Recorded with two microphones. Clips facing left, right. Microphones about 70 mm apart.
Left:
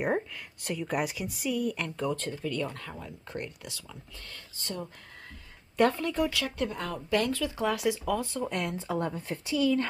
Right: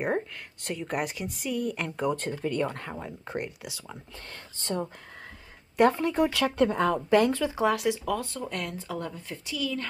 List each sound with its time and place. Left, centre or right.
0.0 s speech: centre
1.8 s speech: centre
2.4 s speech: right
3.3 s speech: centre
3.9 s speech: right
5.8 s speech: centre
6.3 s speech: right
7.1 s speech: right
7.7 s speech: centre
8.5 s speech: centre